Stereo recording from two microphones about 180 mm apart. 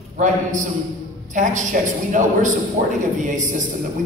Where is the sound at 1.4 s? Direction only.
40° right (ahead or behind).